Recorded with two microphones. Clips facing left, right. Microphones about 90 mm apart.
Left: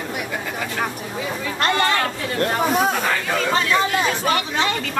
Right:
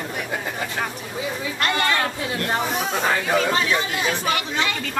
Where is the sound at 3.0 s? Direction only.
10° right (ahead or behind).